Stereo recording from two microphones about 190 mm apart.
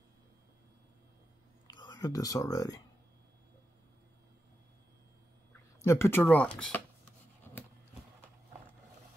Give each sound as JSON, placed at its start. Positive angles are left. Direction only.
{"t": 1.7, "sound": "speech", "side_deg": 20}
{"t": 5.5, "sound": "speech", "side_deg": 15}